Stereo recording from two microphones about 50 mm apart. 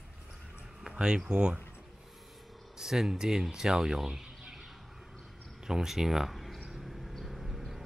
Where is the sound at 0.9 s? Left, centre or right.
Centre.